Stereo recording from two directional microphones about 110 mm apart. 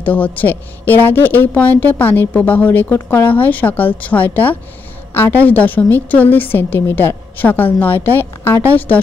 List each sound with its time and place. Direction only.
0.0 s a woman's voice: 15° left (ahead or behind)